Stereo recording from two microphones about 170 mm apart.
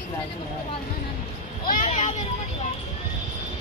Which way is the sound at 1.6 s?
50° left (ahead or behind).